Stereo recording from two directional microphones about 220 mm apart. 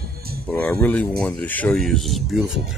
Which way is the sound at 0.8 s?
5° left (ahead or behind).